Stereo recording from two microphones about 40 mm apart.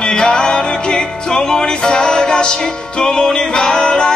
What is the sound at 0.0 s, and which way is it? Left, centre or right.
Music, left.